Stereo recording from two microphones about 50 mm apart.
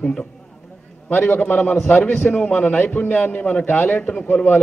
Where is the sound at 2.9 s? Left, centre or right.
Left.